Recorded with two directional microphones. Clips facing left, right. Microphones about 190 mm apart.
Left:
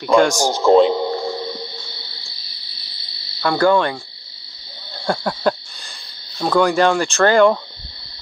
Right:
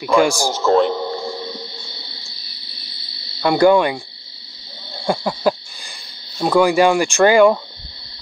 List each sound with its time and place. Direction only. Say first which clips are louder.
0.0 s speech: left 1 dB; 5° right (ahead or behind)
0.5 s a man's voice: left 3 dB; 10° left (ahead or behind)
3.3 s speech: right 3 dB; 15° right (ahead or behind)
5.0 s owl: right 1 dB; 5° right (ahead or behind)
6.3 s speech: right 2 dB; 10° right (ahead or behind)